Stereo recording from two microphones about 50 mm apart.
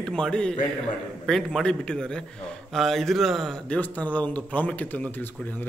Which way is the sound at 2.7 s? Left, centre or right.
Centre.